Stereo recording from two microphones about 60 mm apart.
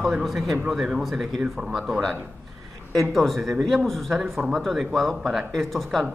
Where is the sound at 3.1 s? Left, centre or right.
Centre.